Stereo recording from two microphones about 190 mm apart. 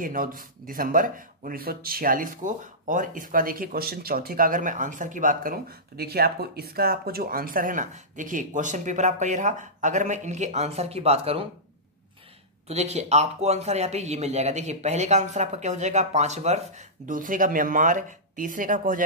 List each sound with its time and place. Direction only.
0.0 s speech: 45° right (ahead or behind)
12.6 s speech: 35° right (ahead or behind)